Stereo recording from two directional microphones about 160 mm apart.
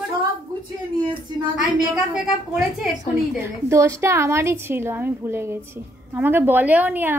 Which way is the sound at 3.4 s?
20° right (ahead or behind).